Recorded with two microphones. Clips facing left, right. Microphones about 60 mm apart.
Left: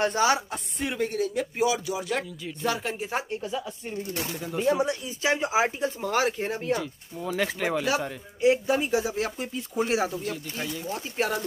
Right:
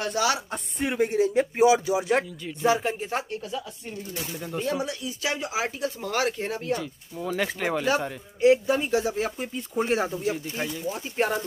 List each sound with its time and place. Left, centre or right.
0.0 s a sound: left
0.5 s speech: centre
1.2 s speech: right
2.6 s speech: centre
3.0 s speech: centre
4.1 s speech: left
4.4 s speech: centre
4.8 s speech: left
5.9 s speech: centre
8.4 s speech: centre
9.1 s speech: centre